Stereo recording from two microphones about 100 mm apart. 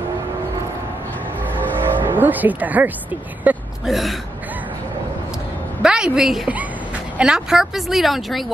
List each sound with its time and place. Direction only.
1.8 s speech: 20° right (ahead or behind)
3.8 s speech: centre (ahead or behind)
5.8 s a woman's voice: 10° right (ahead or behind)